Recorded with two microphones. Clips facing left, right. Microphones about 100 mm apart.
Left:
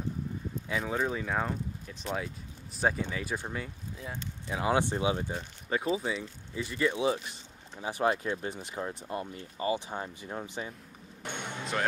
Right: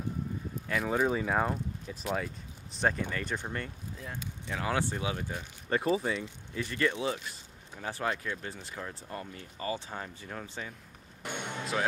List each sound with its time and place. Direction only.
0.7 s speech: centre (ahead or behind)
4.5 s speech: 20° left (ahead or behind)
5.7 s speech: centre (ahead or behind)
6.1 s speech: 15° left (ahead or behind)
8.1 s speech: 25° left (ahead or behind)
11.2 s basketball bounce: centre (ahead or behind)